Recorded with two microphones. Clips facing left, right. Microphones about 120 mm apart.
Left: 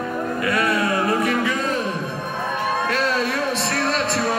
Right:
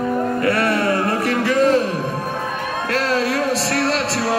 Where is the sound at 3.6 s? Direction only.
75° right (ahead or behind).